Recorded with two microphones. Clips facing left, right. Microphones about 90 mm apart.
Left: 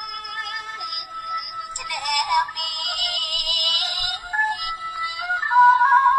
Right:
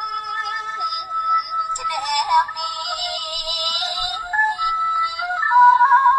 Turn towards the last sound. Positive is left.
turn(degrees=-20)  # may be behind; listen again after turning